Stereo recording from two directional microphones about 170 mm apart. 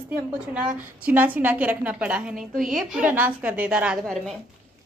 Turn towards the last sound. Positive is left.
turn(degrees=-5)  # may be behind; listen again after turning